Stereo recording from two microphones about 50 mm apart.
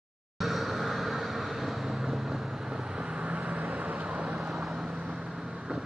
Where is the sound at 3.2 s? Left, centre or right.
Right.